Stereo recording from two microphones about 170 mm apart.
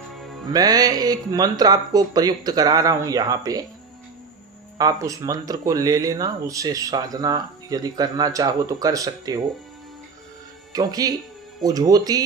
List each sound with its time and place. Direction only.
0.5 s speech: 20° right (ahead or behind)
4.7 s speech: 20° right (ahead or behind)
10.7 s speech: 20° right (ahead or behind)